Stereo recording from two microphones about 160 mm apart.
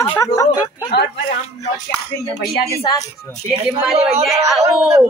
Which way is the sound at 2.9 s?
30° left (ahead or behind).